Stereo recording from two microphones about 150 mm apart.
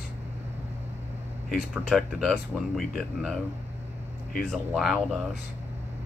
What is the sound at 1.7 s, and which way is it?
Speech, centre (ahead or behind).